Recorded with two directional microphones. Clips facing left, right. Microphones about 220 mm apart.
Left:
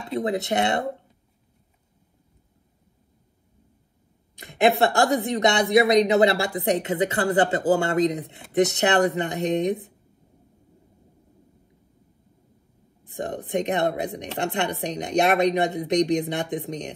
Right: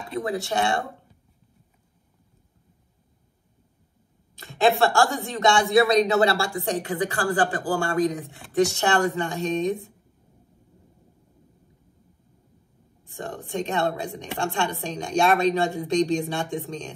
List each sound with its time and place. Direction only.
0.1 s speech: 20° left (ahead or behind)
4.4 s speech: 20° left (ahead or behind)
13.0 s speech: 20° left (ahead or behind)